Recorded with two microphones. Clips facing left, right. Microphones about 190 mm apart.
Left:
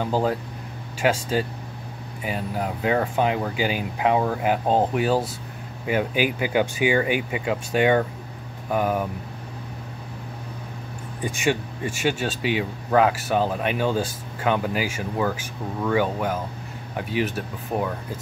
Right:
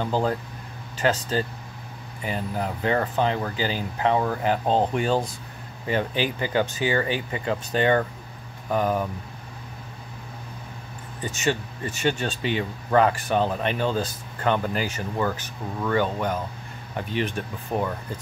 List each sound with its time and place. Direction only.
0.0 s speech: 5° left (ahead or behind)
11.2 s speech: 10° left (ahead or behind)